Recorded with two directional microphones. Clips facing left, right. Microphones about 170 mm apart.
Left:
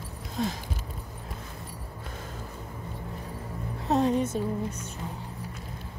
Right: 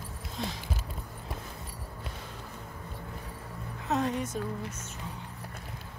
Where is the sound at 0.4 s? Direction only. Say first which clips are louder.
Left 7 dB; 50° left (ahead or behind).